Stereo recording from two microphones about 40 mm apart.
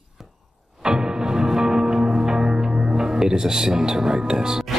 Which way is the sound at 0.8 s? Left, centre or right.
Centre.